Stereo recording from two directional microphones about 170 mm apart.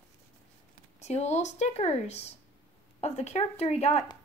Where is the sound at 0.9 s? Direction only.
40° left (ahead or behind).